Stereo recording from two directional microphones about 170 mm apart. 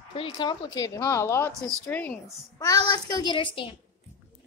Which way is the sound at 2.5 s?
20° left (ahead or behind).